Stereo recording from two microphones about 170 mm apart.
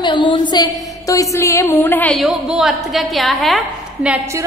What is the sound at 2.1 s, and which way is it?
A woman's voice, centre (ahead or behind).